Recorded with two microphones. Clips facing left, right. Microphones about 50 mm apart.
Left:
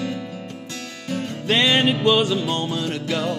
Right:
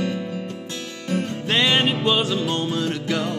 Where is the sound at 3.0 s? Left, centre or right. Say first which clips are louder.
Even; right.